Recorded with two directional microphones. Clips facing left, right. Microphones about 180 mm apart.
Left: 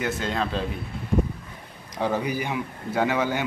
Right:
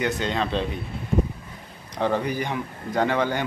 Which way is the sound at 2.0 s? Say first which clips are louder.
Right 1 dB; 10° left (ahead or behind).